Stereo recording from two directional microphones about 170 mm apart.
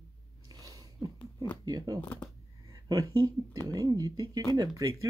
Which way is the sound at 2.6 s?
20° right (ahead or behind).